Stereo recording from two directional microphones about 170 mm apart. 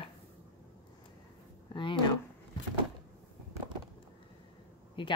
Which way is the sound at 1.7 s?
30° left (ahead or behind).